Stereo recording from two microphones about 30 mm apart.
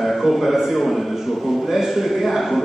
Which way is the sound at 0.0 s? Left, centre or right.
Centre.